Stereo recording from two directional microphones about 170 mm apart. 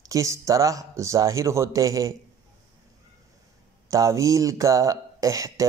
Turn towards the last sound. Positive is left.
turn(degrees=-20)  # may be behind; listen again after turning